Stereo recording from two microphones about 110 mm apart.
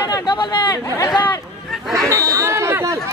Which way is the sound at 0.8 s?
30° left (ahead or behind).